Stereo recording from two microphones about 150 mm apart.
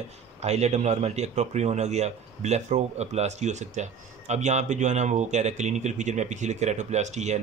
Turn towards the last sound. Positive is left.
turn(degrees=-50)  # may be behind; listen again after turning